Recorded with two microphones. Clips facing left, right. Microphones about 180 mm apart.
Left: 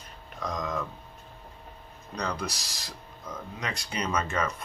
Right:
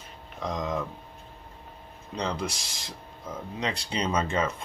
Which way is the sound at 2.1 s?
25° right (ahead or behind).